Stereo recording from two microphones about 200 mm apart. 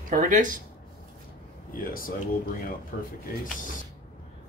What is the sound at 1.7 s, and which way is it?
Speech, 45° left (ahead or behind).